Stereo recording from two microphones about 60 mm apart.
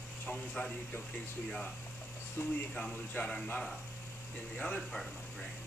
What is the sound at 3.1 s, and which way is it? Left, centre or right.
Speech, centre.